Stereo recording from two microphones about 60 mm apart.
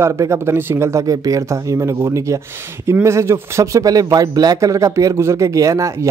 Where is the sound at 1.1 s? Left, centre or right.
Right.